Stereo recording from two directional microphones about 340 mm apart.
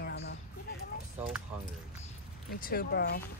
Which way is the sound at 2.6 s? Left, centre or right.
Left.